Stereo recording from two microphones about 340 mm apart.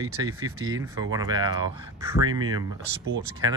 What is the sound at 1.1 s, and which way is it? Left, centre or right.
Speech, centre.